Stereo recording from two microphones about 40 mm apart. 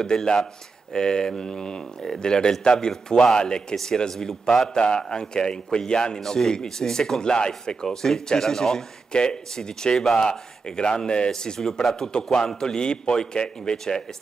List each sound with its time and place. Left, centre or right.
0.0 s a man's voice: centre